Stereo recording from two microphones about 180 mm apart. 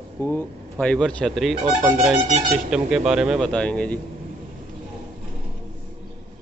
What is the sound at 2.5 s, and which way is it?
Speech, 5° right (ahead or behind).